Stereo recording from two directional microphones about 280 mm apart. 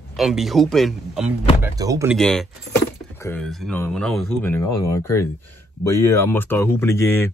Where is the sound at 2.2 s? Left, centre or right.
Centre.